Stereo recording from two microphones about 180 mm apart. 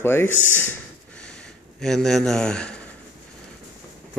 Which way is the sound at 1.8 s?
Centre (ahead or behind).